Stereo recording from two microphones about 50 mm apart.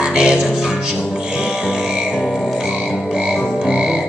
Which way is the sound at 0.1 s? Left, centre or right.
Centre.